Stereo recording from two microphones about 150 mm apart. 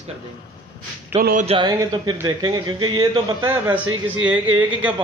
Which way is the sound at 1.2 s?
70° right (ahead or behind).